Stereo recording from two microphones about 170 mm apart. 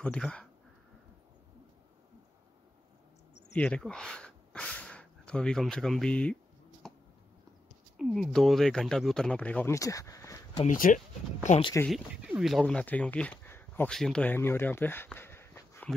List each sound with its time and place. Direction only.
0.0 s speech: 5° left (ahead or behind)
3.5 s speech: 5° left (ahead or behind)
6.8 s a sound: centre (ahead or behind)
8.0 s speech: 5° left (ahead or behind); by 10.6 s 20° left (ahead or behind)
10.6 s speech: 50° left (ahead or behind)
11.9 s speech: centre (ahead or behind); by 15.9 s 15° left (ahead or behind)